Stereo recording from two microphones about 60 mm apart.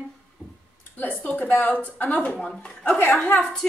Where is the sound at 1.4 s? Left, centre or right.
Left.